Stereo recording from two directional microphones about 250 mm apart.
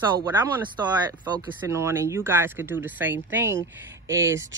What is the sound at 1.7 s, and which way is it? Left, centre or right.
Speech, centre.